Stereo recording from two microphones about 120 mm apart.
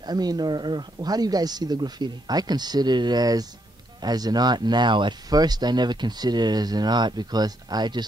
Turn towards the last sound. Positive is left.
turn(degrees=-35)  # may be behind; listen again after turning